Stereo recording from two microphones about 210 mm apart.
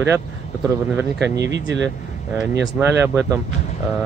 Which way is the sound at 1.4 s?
60° right (ahead or behind).